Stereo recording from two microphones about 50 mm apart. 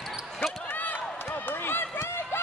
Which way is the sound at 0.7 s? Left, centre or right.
Left.